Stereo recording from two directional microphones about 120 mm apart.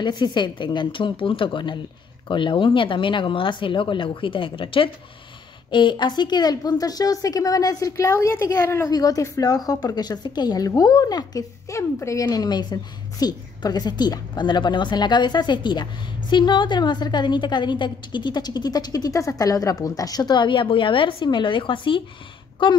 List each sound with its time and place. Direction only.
0.0 s a woman's voice: 40° left (ahead or behind)
12.3 s a woman's voice: 35° left (ahead or behind)